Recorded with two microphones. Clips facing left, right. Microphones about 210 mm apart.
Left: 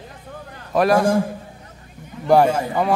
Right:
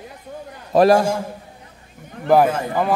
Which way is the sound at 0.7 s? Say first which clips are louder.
Right 4 dB; 30° right (ahead or behind).